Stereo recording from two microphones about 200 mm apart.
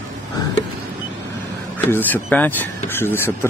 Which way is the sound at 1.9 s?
10° left (ahead or behind).